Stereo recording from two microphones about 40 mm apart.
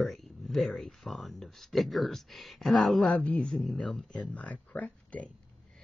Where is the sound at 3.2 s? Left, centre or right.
Left.